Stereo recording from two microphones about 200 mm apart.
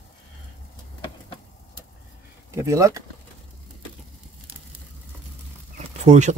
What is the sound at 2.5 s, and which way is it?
Speech, 15° right (ahead or behind).